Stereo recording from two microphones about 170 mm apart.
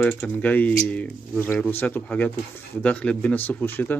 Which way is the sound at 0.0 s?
10° left (ahead or behind).